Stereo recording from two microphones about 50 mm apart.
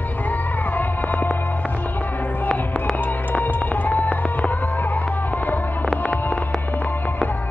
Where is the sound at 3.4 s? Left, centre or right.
Left.